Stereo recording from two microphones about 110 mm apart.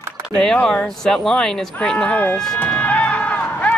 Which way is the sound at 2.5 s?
15° left (ahead or behind).